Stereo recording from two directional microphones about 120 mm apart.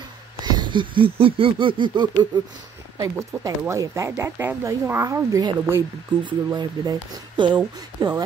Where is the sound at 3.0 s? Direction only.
25° right (ahead or behind).